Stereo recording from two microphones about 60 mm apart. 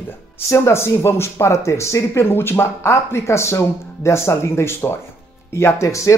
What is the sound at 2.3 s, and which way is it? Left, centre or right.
Speech, left.